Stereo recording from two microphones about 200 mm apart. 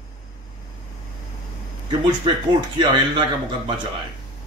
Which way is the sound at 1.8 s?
25° right (ahead or behind).